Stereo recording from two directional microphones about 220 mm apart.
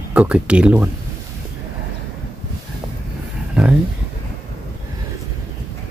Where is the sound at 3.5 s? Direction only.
5° right (ahead or behind).